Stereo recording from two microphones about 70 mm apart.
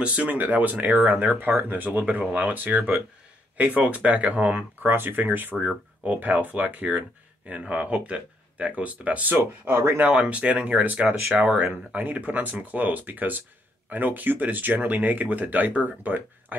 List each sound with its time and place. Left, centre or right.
0.0 s speech: right
4.8 s speech: right
9.7 s speech: right
10.0 s speech: centre